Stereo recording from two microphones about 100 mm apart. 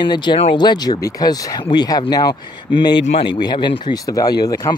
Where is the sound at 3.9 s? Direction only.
40° left (ahead or behind).